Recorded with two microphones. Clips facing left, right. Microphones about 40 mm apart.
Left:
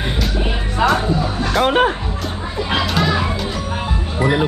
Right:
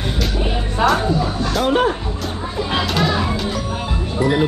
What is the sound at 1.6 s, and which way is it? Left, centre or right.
Speech, left.